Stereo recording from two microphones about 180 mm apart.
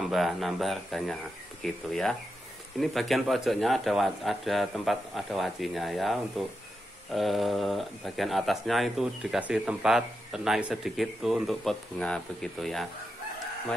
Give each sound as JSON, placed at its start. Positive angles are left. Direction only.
{"t": 0.0, "sound": "speech", "side_deg": 0}